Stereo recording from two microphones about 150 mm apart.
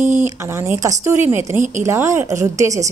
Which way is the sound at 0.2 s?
15° right (ahead or behind).